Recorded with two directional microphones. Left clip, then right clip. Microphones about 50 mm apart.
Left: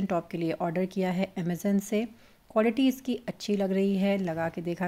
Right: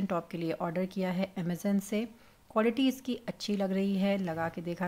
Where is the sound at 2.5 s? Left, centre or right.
Left.